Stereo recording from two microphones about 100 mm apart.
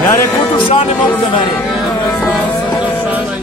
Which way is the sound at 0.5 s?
70° left (ahead or behind).